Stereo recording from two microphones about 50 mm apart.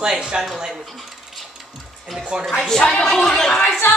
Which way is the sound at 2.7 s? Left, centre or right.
Centre.